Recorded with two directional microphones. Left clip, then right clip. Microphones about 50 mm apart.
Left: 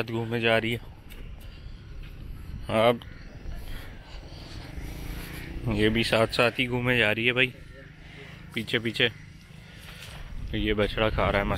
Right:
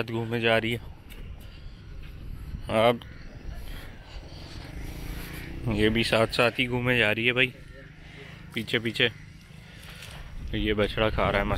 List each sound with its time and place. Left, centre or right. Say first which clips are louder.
0.3 s speech: even; right
2.6 s speech: even; right
4.4 s a sound: even; right
4.6 s vehicle: even; centre
5.3 s a sound: even; right
5.7 s speech: even; right
8.5 s speech: even; right
9.8 s mechanisms: even; right
10.5 s speech: even; right